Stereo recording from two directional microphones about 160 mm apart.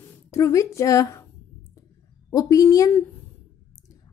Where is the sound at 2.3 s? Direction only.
20° left (ahead or behind).